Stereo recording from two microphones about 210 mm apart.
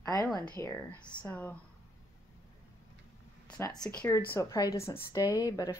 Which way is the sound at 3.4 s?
5° left (ahead or behind).